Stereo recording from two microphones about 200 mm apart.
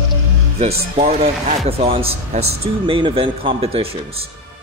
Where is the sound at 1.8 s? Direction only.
30° right (ahead or behind).